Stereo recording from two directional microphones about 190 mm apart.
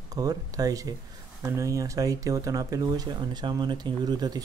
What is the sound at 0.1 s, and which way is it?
Speech, 20° right (ahead or behind).